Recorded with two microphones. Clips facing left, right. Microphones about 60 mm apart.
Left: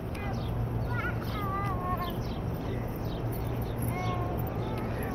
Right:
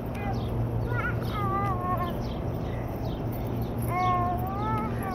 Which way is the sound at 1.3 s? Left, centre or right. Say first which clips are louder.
Right 4 dB; centre.